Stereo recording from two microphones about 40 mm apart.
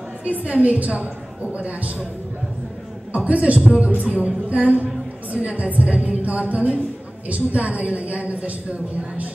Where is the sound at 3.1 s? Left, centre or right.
Right.